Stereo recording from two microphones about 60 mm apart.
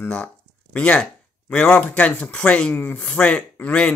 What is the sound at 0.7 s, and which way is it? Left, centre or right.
Speech, left.